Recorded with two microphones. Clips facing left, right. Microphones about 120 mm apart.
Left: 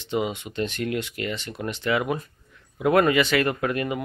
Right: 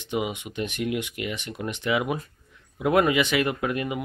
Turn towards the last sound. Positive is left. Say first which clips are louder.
# left 1 dB
turn(degrees=-10)  # may be behind; listen again after turning